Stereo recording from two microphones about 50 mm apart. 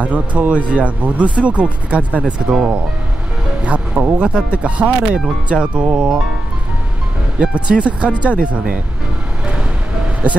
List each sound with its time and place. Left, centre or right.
0.0 s speech: right
3.6 s speech: right
7.3 s speech: right